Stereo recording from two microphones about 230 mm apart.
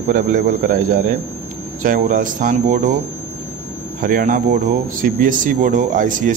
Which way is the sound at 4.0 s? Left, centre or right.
Right.